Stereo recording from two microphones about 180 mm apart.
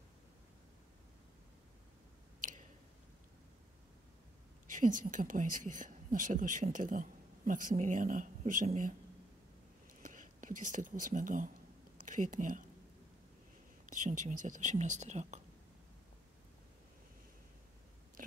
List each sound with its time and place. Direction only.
4.6 s speech: 45° right (ahead or behind)
10.0 s speech: 45° right (ahead or behind)
13.8 s speech: 45° right (ahead or behind)